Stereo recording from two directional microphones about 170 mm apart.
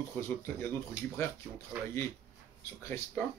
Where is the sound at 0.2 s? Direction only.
15° left (ahead or behind).